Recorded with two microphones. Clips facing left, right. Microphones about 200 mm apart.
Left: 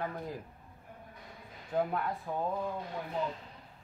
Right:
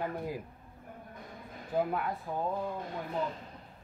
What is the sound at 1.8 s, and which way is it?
Speech, 5° right (ahead or behind).